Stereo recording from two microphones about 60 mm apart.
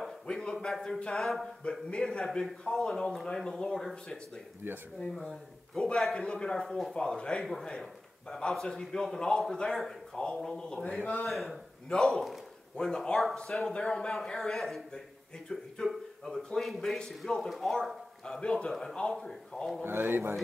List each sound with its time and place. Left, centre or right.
0.3 s a sound: centre
1.1 s speech: centre
1.6 s a man's voice: centre
2.2 s a man's voice: centre
19.8 s speech: right